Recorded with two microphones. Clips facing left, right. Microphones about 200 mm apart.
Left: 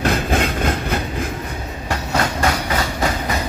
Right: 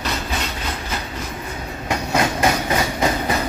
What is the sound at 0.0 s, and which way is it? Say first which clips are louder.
Train: left 7 dB; 55° left (ahead or behind).